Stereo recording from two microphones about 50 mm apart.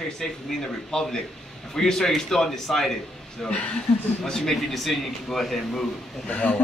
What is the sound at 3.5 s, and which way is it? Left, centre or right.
Speech, left.